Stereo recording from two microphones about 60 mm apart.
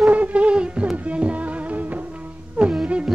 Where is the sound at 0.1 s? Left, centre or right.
Right.